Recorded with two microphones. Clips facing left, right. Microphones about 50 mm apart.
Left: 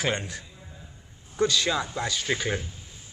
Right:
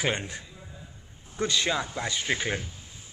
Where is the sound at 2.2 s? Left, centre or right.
Centre.